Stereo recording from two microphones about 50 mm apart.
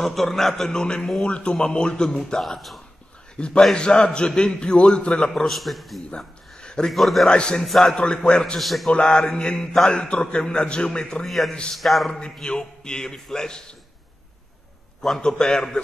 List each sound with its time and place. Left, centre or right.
0.0 s speech: centre
3.3 s a man's voice: centre
5.6 s a man's voice: centre
6.0 s a sound: centre
6.9 s a man's voice: centre
7.2 s speech: centre
8.5 s a man's voice: centre
8.9 s speech: centre
11.2 s a man's voice: centre
12.4 s speech: centre
15.0 s speech: centre